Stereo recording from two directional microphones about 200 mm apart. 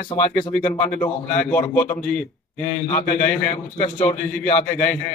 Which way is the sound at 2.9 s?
45° left (ahead or behind).